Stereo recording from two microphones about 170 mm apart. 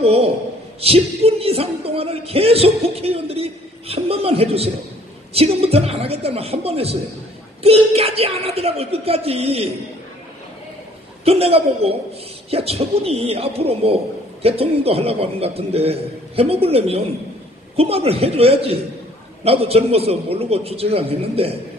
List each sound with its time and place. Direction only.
0.0 s a man's voice: 35° right (ahead or behind)
11.2 s a man's voice: 35° right (ahead or behind)